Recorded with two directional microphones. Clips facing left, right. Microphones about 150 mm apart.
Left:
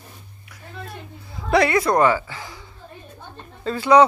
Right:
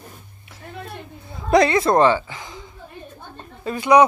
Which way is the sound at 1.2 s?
20° right (ahead or behind).